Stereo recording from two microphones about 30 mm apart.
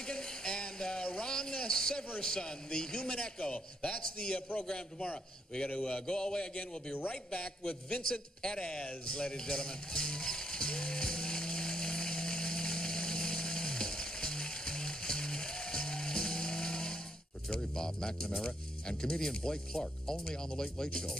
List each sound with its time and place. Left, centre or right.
0.0 s speech: left
5.7 s a sound: left
6.0 s speech: left
9.1 s music: left
17.7 s speech: left